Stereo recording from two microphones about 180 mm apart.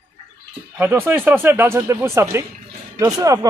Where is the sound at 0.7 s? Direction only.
10° right (ahead or behind).